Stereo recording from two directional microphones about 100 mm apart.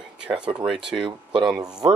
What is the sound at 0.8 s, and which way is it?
Speech, 60° right (ahead or behind).